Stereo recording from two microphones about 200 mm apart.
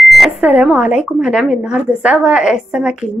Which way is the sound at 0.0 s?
Centre (ahead or behind).